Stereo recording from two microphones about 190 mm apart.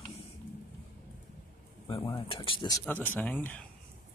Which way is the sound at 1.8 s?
25° left (ahead or behind).